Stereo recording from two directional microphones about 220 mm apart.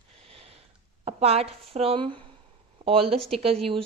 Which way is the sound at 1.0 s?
30° right (ahead or behind).